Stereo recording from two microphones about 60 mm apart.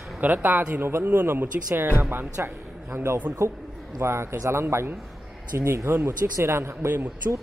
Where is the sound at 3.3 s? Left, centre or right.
Right.